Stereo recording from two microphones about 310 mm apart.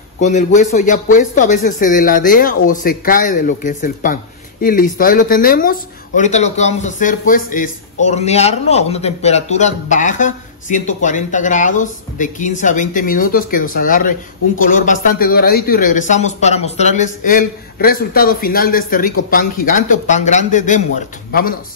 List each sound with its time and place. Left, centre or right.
0.2 s speech: left